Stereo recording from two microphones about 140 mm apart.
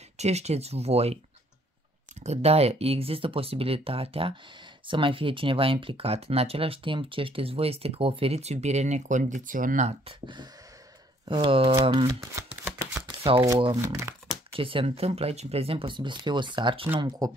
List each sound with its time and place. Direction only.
0.2 s speech: 50° right (ahead or behind)
2.2 s speech: 50° right (ahead or behind); by 9.8 s 75° right (ahead or behind)
9.8 s speech: 40° right (ahead or behind)
12.1 s speech: 25° right (ahead or behind)
13.8 s speech: 25° right (ahead or behind)
14.5 s speech: 40° right (ahead or behind)